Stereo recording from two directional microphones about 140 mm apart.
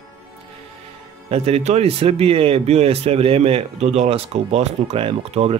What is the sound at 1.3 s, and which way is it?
Speech, 45° right (ahead or behind).